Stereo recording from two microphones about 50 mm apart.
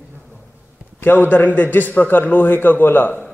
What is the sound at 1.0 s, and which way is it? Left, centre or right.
A man's voice, left.